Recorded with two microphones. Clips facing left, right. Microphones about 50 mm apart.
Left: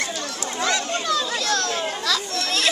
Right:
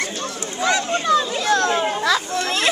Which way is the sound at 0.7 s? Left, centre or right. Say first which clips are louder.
Right 5 dB; right.